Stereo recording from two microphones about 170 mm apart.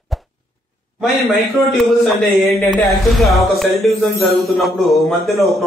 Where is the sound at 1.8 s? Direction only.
Centre (ahead or behind).